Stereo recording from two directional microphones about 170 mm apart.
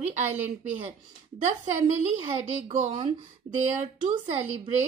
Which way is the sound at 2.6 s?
40° right (ahead or behind).